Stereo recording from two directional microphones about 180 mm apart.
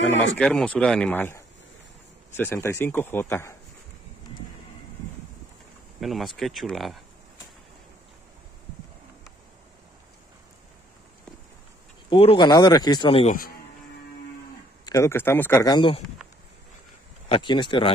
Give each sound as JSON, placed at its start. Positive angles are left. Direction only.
{"t": 0.4, "sound": "speech", "side_deg": 5}
{"t": 5.9, "sound": "speech", "side_deg": 0}
{"t": 12.1, "sound": "speech", "side_deg": 30}
{"t": 13.3, "sound": "speech", "side_deg": 55}
{"t": 14.9, "sound": "speech", "side_deg": 15}
{"t": 17.3, "sound": "speech", "side_deg": 25}